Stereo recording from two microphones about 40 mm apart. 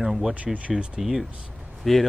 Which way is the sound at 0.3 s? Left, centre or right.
Right.